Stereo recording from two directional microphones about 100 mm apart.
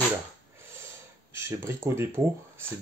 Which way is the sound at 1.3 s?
25° right (ahead or behind).